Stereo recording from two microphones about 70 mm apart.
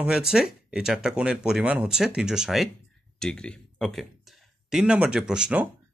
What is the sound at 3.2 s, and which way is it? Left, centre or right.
Speech, centre.